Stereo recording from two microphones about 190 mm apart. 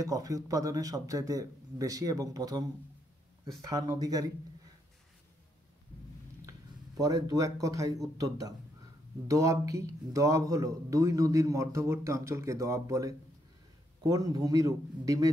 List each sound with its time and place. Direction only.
0.0 s a man's voice: 20° right (ahead or behind)
4.0 s a man's voice: 20° right (ahead or behind)
7.0 s a man's voice: 20° right (ahead or behind)